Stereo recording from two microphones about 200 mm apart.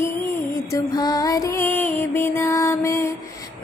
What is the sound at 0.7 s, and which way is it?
Music, 20° left (ahead or behind).